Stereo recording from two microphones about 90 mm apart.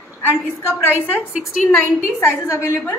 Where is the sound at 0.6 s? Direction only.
25° left (ahead or behind).